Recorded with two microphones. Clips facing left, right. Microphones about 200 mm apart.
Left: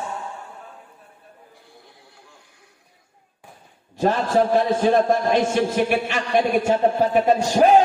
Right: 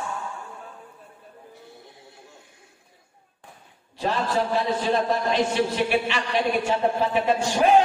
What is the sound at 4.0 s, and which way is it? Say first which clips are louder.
A man's voice: left 6 dB; 45° left (ahead or behind).